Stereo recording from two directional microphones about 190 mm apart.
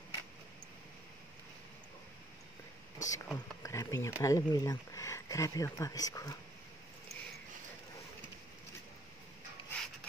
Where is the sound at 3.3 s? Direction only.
15° left (ahead or behind).